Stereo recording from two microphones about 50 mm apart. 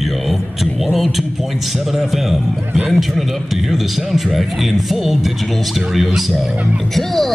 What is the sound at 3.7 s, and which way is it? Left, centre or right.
A woman's voice, centre.